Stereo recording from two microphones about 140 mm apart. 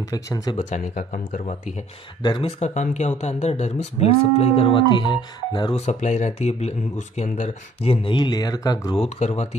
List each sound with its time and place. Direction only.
0.0 s speech: 25° left (ahead or behind)
0.6 s speech: 55° left (ahead or behind)
2.2 s speech: 35° left (ahead or behind)
2.6 s speech: 55° left (ahead or behind)
7.8 s speech: 40° left (ahead or behind); by 8.9 s 25° left (ahead or behind)
8.9 s speech: 45° left (ahead or behind)